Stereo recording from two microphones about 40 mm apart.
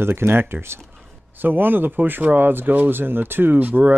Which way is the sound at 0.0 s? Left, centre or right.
Right.